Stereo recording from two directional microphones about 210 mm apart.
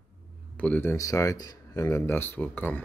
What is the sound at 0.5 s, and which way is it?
Speech, 5° left (ahead or behind).